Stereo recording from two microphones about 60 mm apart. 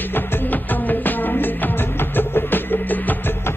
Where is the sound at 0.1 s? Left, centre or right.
Left.